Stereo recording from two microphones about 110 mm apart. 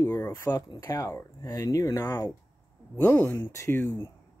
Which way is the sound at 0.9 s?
30° left (ahead or behind).